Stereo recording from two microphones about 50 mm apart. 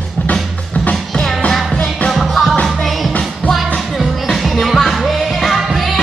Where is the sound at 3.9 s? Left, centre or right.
Centre.